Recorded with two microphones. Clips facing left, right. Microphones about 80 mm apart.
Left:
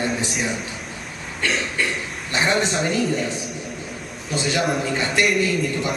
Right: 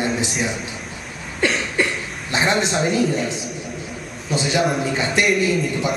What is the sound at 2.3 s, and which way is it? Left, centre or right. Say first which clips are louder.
A man's voice: right 1 dB; centre.